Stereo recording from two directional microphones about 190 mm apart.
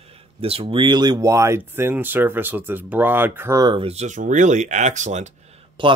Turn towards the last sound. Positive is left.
turn(degrees=-25)  # may be behind; listen again after turning